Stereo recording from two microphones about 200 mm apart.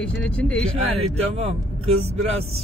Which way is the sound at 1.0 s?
30° right (ahead or behind).